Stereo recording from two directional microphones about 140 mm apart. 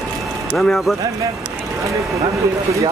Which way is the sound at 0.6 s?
Centre (ahead or behind).